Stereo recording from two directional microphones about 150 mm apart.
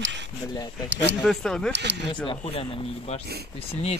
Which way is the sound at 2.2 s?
35° left (ahead or behind).